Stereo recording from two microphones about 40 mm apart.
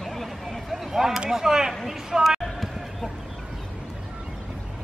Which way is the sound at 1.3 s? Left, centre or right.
Centre.